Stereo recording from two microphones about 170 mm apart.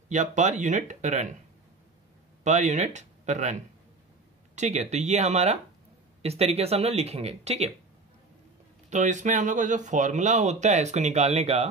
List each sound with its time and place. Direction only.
0.1 s speech: 45° right (ahead or behind)
2.4 s speech: 45° right (ahead or behind)
4.6 s speech: 40° right (ahead or behind)
8.9 s speech: 45° right (ahead or behind)